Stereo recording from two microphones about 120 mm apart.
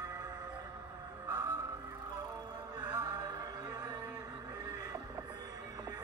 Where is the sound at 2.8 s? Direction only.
20° right (ahead or behind).